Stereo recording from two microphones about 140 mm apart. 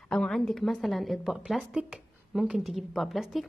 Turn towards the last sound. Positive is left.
turn(degrees=0)  # may be behind; listen again after turning